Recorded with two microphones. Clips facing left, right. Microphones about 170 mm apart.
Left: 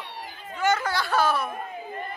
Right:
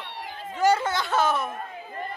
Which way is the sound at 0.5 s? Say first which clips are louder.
Right 3 dB; 35° right (ahead or behind).